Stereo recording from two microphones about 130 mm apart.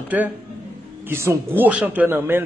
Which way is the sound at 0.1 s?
10° right (ahead or behind).